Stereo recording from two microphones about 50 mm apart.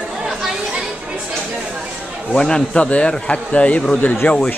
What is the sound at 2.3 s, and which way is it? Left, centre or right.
A man's voice, centre.